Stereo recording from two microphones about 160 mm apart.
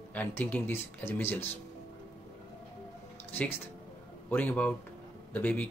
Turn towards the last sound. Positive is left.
turn(degrees=10)  # may be behind; listen again after turning